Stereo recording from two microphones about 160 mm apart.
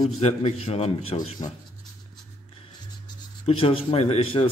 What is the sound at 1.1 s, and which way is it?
Speech, 25° left (ahead or behind).